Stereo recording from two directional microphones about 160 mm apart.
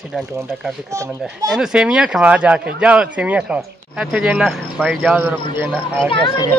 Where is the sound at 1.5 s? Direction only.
5° right (ahead or behind).